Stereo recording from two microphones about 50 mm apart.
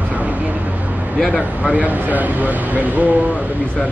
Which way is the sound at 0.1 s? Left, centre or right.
Right.